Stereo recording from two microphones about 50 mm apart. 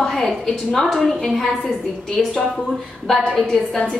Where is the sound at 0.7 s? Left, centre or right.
Centre.